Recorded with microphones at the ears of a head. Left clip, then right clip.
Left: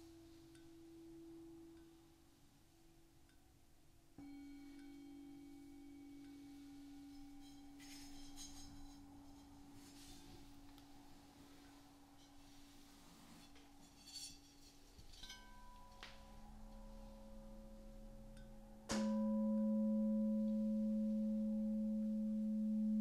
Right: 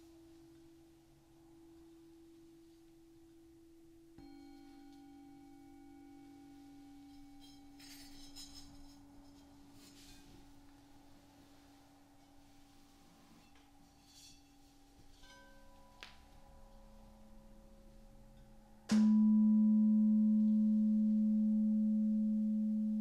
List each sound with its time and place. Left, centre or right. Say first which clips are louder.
18.9 s tuning fork: right 9 dB; right